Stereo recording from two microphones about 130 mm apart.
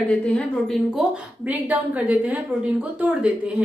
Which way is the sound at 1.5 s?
10° right (ahead or behind).